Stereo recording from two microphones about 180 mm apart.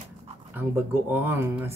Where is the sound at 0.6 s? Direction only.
10° right (ahead or behind).